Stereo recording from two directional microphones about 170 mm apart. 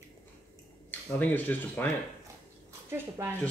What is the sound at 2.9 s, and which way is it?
Speech, 15° right (ahead or behind).